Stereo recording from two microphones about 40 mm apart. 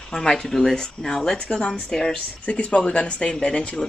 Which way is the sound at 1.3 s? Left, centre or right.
Left.